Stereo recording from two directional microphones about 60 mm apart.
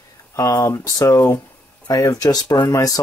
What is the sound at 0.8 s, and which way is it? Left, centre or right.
Speech, left.